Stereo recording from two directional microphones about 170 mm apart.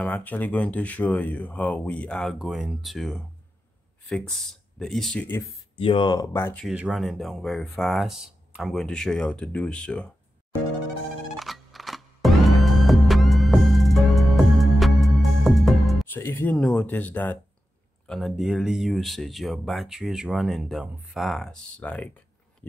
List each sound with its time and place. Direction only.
0.0 s speech: 10° left (ahead or behind)
4.7 s speech: centre (ahead or behind)
5.8 s speech: 30° left (ahead or behind); by 6.6 s 15° left (ahead or behind)
6.6 s speech: 5° right (ahead or behind)
11.3 s music: centre (ahead or behind)
16.1 s speech: 15° left (ahead or behind)